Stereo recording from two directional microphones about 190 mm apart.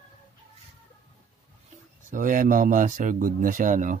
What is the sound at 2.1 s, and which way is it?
Speech, 45° right (ahead or behind).